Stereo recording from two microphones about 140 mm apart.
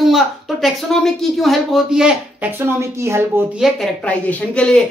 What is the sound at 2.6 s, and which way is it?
Speech, 20° right (ahead or behind).